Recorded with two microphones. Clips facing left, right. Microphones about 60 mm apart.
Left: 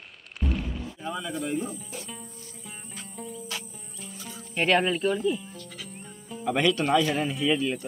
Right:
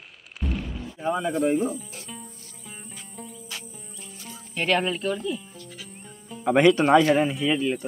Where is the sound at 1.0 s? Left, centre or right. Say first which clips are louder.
Right 9 dB; right.